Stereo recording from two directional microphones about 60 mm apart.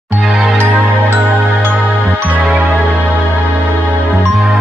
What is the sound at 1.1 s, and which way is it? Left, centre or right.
Music, right.